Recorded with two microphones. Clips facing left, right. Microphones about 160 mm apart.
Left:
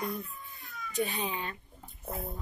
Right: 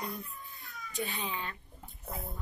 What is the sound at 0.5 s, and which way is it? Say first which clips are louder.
Cat: left 7 dB; 20° left (ahead or behind).